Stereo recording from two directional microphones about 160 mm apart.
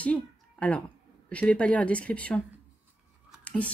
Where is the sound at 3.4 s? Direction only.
10° left (ahead or behind).